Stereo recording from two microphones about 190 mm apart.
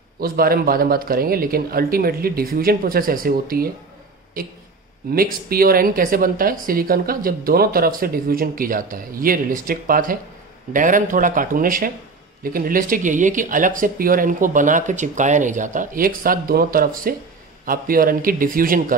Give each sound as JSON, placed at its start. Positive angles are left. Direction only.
{"t": 0.2, "sound": "speech", "side_deg": -50}